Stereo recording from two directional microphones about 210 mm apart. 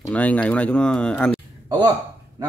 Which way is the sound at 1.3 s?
20° right (ahead or behind).